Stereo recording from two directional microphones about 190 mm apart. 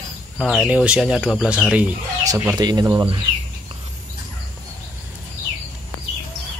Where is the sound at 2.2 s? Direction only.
15° right (ahead or behind).